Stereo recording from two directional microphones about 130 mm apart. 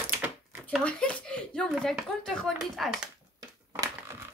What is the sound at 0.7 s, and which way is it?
Speech, 10° left (ahead or behind).